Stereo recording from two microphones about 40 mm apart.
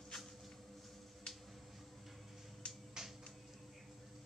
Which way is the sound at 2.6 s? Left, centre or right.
Left.